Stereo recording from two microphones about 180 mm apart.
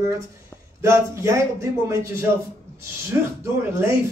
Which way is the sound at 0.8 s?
15° right (ahead or behind).